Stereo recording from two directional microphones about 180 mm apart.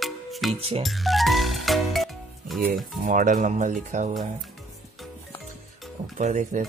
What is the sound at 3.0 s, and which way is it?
Speech, 45° right (ahead or behind).